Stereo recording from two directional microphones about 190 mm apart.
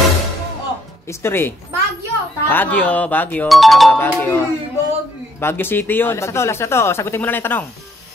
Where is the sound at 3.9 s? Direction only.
10° left (ahead or behind).